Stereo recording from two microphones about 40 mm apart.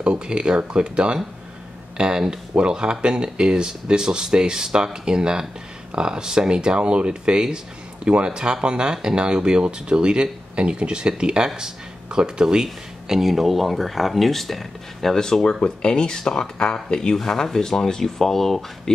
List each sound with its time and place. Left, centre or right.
0.0 s speech: right
12.6 s speech: centre
15.1 s speech: centre